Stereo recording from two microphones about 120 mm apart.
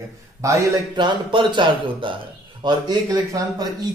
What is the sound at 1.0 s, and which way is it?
Speech, 40° right (ahead or behind).